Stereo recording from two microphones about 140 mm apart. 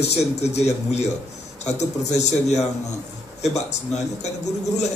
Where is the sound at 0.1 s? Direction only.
50° left (ahead or behind).